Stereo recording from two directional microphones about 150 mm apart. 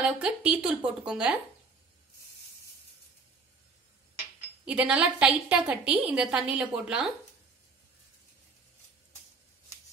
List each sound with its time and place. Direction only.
0.2 s a woman's voice: 10° right (ahead or behind)
4.6 s a woman's voice: 10° right (ahead or behind)